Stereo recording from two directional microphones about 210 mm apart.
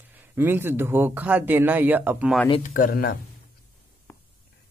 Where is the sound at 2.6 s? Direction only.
40° left (ahead or behind).